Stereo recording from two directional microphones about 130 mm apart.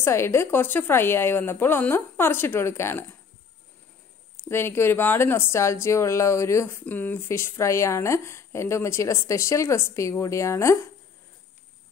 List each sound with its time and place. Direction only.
0.0 s a woman's voice: 20° left (ahead or behind)
4.5 s speech: 20° left (ahead or behind)